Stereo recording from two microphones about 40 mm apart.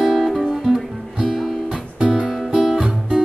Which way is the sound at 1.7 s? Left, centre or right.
Right.